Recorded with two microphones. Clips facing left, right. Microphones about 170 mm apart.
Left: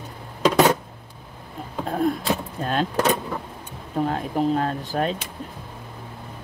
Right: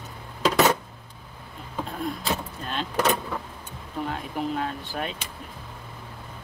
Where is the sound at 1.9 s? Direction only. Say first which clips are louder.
Left 10 dB; 50° left (ahead or behind).